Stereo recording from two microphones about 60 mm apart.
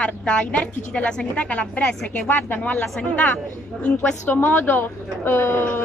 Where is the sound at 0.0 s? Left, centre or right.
Left.